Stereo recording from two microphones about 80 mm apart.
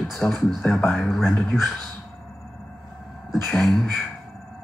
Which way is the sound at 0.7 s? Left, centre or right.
Centre.